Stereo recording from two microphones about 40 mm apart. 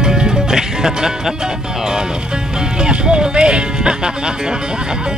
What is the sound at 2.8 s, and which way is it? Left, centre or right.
Music, right.